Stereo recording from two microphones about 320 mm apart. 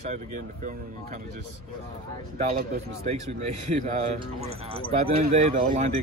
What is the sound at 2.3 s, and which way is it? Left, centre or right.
Speech, right.